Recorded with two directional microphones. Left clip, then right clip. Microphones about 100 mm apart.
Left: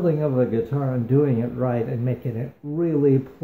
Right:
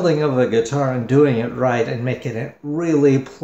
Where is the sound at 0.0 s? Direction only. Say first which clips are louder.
Right 5 dB; 15° left (ahead or behind).